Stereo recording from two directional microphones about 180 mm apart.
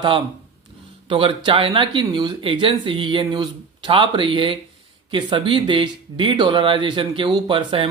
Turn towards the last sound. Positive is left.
turn(degrees=-30)  # may be behind; listen again after turning